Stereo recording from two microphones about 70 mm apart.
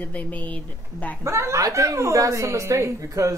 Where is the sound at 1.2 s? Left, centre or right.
Right.